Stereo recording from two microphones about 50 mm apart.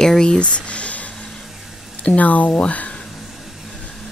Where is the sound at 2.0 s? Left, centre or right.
Left.